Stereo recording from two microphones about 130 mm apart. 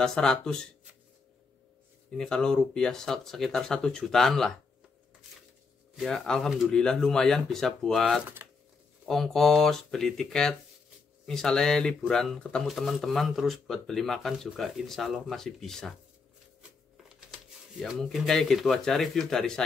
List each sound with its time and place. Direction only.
0.0 s speech: 5° left (ahead or behind)
2.0 s speech: 5° left (ahead or behind)
5.9 s speech: 5° left (ahead or behind)
16.9 s speech: 5° right (ahead or behind)